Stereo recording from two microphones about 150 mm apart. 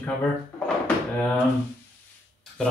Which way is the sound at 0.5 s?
5° left (ahead or behind).